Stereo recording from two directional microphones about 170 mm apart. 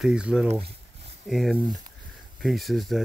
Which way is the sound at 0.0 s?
5° right (ahead or behind).